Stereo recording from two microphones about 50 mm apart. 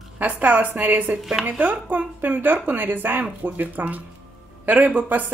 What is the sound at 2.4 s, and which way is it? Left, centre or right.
Speech, right.